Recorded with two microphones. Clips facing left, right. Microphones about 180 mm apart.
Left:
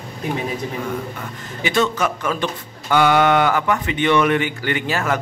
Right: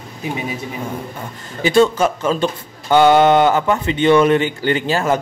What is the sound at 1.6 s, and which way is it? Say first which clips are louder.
Speech: right 6 dB; 30° right (ahead or behind).